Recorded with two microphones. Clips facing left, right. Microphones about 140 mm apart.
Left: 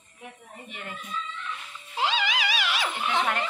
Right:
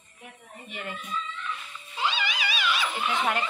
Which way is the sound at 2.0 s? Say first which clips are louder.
Left 3 dB; 90° left.